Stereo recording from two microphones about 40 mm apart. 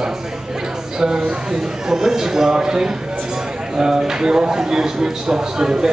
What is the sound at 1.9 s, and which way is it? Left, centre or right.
Speech, centre.